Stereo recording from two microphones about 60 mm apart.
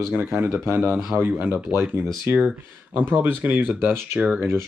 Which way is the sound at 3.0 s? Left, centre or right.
Right.